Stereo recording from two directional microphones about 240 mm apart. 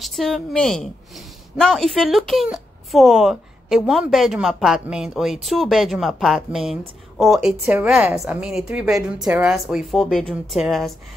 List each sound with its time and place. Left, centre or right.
0.0 s speech: centre